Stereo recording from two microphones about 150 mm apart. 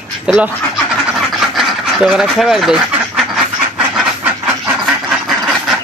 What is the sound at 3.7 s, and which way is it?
Duck, 10° right (ahead or behind).